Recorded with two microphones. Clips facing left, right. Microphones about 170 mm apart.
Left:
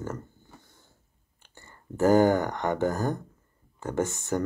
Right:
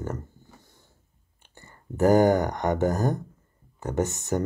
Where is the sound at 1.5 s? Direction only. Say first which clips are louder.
Right 2 dB; 20° right (ahead or behind).